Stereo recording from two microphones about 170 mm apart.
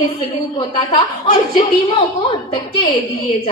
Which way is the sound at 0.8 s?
30° left (ahead or behind).